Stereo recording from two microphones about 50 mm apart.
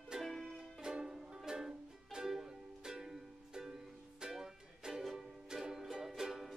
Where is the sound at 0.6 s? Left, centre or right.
Centre.